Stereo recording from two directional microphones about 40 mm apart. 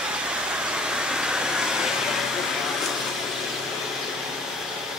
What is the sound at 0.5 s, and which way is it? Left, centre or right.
Vehicle, right.